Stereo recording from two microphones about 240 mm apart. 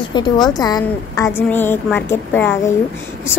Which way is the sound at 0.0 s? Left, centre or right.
Centre.